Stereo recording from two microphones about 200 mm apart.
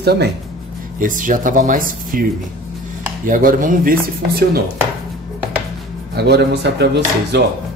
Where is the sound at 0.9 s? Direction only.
40° right (ahead or behind).